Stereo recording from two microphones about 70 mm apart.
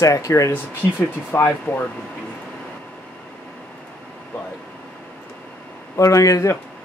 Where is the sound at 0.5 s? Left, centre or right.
Left.